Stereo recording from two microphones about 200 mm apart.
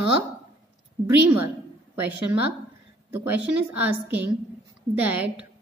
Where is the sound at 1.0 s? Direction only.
10° right (ahead or behind).